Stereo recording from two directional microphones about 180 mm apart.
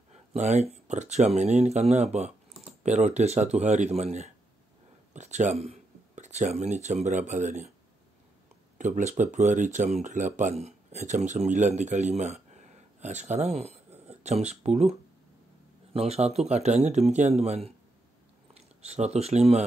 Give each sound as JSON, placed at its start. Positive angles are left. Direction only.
{"t": 0.1, "sound": "speech", "side_deg": -40}
{"t": 8.7, "sound": "speech", "side_deg": -40}